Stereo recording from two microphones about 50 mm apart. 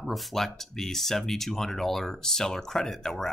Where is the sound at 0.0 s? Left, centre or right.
Centre.